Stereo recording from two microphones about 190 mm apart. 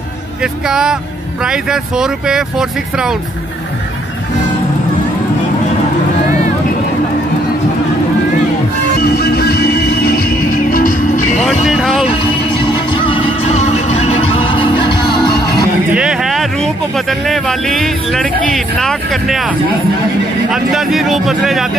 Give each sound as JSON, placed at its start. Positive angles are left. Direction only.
{"t": 0.4, "sound": "speech", "side_deg": -5}
{"t": 9.0, "sound": "music", "side_deg": 55}
{"t": 11.6, "sound": "speech", "side_deg": 0}
{"t": 12.1, "sound": "music", "side_deg": 25}
{"t": 15.9, "sound": "speech", "side_deg": -5}
{"t": 20.5, "sound": "speech", "side_deg": 0}